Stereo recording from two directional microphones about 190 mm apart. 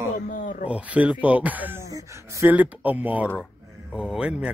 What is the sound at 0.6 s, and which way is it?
Speech, 5° right (ahead or behind).